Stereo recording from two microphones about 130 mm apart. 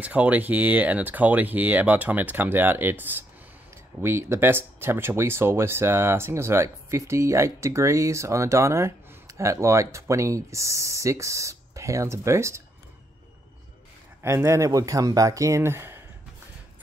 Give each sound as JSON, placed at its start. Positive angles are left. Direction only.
{"t": 0.0, "sound": "speech", "side_deg": -10}
{"t": 14.2, "sound": "speech", "side_deg": -20}